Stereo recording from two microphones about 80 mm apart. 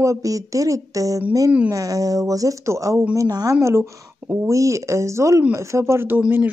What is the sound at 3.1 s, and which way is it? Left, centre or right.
Speech, right.